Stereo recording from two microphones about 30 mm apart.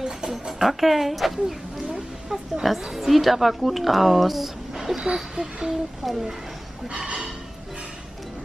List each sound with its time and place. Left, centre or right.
0.3 s speech: centre
1.9 s a sound: centre
2.6 s a woman's voice: centre
4.7 s a sound: centre
5.0 s speech: centre
6.0 s speech: centre